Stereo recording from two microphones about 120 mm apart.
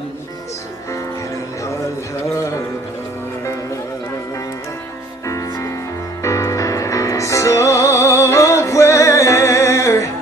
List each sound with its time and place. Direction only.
5.2 s music: 25° left (ahead or behind)